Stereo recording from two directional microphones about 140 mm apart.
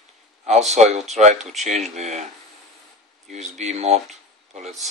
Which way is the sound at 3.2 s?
55° right (ahead or behind).